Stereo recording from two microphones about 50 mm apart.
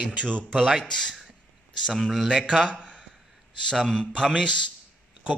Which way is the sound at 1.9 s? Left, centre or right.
Centre.